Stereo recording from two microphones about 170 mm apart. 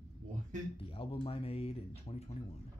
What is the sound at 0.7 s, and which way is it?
Speech, 30° left (ahead or behind).